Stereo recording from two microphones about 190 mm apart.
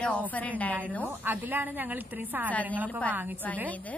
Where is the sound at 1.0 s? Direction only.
10° right (ahead or behind).